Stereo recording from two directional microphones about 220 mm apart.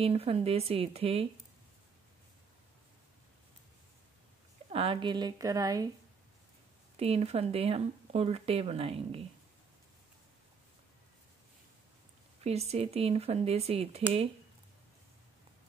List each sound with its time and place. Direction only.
0.0 s speech: 25° right (ahead or behind)
4.6 s speech: 25° right (ahead or behind)
7.0 s speech: 25° right (ahead or behind)
12.4 s speech: 30° right (ahead or behind)